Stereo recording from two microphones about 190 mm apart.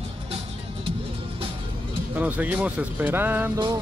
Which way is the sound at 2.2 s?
10° right (ahead or behind).